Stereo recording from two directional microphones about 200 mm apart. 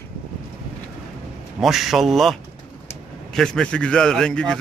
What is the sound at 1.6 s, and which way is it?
A man's voice, centre (ahead or behind).